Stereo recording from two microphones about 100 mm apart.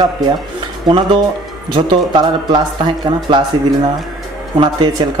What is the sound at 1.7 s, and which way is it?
A man's voice, 55° right (ahead or behind).